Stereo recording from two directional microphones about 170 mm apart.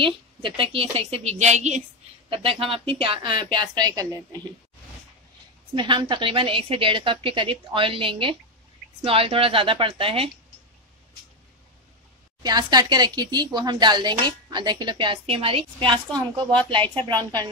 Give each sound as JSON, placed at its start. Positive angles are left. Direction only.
{"t": 0.0, "sound": "a woman's voice", "side_deg": -30}
{"t": 5.8, "sound": "a woman's voice", "side_deg": -30}
{"t": 12.4, "sound": "speech", "side_deg": -25}